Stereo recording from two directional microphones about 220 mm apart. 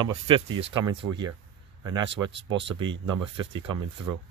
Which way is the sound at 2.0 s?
55° right (ahead or behind).